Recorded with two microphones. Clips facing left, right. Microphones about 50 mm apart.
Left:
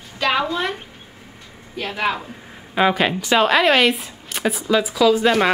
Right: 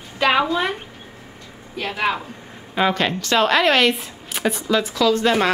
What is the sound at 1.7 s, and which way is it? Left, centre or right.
Speech, centre.